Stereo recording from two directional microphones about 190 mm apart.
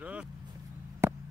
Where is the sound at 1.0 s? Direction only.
10° right (ahead or behind).